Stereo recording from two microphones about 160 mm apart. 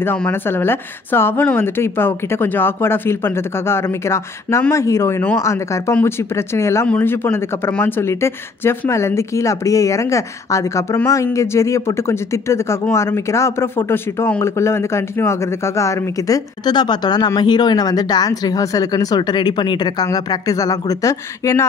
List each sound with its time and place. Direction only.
0.0 s a woman's voice: 15° left (ahead or behind)